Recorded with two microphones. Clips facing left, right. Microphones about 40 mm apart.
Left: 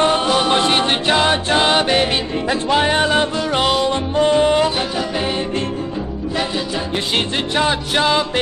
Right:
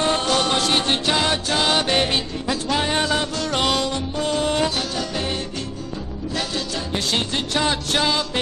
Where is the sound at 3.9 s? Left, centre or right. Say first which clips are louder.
Left 8 dB; left.